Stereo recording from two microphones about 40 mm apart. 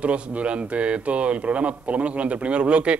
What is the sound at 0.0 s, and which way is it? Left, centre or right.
Speech, right.